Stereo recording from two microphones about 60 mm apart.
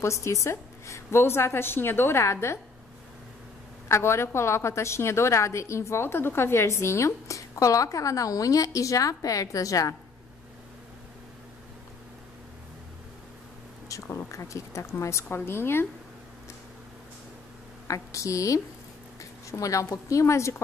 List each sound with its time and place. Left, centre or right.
0.0 s a woman's voice: left
3.9 s a woman's voice: left
14.0 s speech: left
15.2 s a woman's voice: left
17.8 s a woman's voice: left